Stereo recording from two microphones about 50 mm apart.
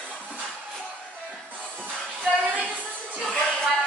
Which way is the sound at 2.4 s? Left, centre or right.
Right.